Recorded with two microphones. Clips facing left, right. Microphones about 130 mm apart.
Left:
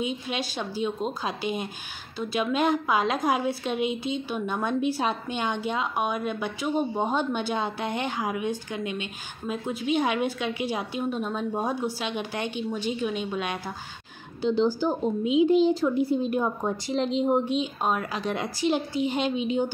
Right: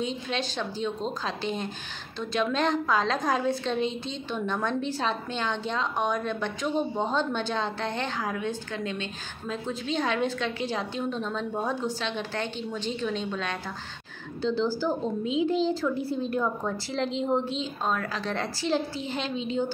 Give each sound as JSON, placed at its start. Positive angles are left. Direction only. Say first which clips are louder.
{"t": 0.0, "sound": "a woman's voice", "louder": "even", "side_deg": 10}